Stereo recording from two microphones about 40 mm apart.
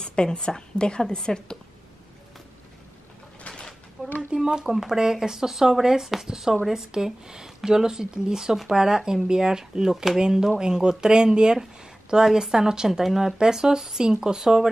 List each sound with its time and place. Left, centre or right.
0.0 s a woman's voice: left
3.5 s a sound: left
4.4 s speech: centre